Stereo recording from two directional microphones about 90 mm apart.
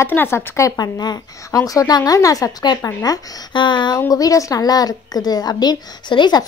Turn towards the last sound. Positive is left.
turn(degrees=55)  # may be behind; listen again after turning